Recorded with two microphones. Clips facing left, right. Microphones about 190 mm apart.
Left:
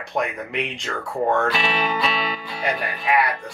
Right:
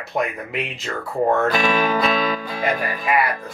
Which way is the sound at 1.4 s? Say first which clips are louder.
Right 4 dB; 45° right (ahead or behind).